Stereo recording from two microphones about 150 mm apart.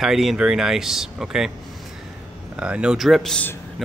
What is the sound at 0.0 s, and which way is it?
Speech, centre (ahead or behind).